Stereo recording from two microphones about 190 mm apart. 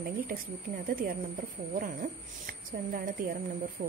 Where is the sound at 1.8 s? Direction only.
45° right (ahead or behind).